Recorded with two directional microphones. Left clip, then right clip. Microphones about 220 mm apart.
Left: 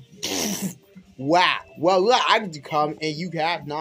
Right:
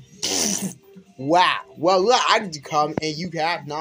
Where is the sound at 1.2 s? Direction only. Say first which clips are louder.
Right 1 dB; centre (ahead or behind).